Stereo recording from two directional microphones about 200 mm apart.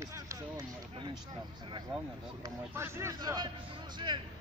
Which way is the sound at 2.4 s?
15° right (ahead or behind).